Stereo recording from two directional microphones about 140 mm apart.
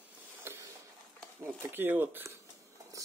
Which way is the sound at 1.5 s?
15° right (ahead or behind).